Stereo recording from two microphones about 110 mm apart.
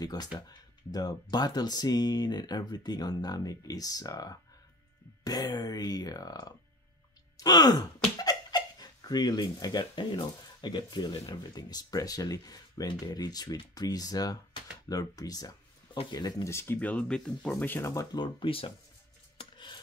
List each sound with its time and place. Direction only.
0.0 s speech: 35° left (ahead or behind)
7.3 s sigh: 35° left (ahead or behind)
8.2 s speech: 40° left (ahead or behind)
18.1 s speech: 45° left (ahead or behind)
19.3 s filing: 45° left (ahead or behind)